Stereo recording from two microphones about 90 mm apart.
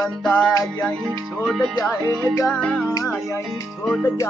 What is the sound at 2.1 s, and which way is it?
Music, 25° right (ahead or behind).